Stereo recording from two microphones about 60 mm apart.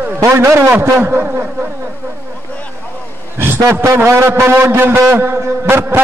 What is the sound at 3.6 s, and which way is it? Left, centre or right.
A man's voice, right.